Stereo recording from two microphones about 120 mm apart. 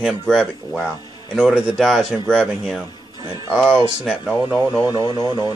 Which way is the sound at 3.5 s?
10° right (ahead or behind).